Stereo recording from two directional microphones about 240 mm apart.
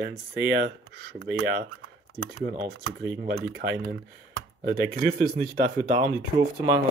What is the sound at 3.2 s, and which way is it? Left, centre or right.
Speech, right.